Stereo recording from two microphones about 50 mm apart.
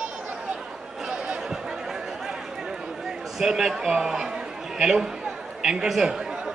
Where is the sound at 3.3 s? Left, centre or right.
Centre.